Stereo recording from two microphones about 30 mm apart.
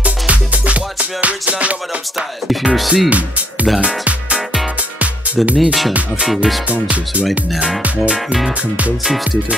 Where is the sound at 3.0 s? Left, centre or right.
Right.